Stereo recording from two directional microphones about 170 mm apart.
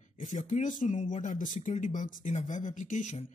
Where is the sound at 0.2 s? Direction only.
45° left (ahead or behind).